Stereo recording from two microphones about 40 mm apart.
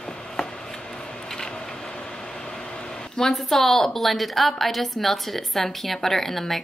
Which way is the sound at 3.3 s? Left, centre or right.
Centre.